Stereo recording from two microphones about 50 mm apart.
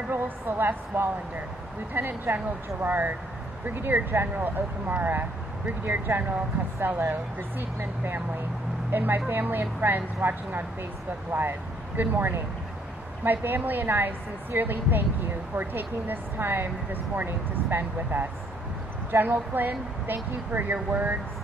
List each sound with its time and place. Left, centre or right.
0.1 s a woman's voice: right